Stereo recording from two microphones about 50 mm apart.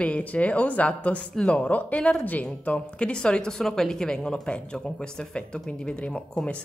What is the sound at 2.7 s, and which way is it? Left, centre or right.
Speech, left.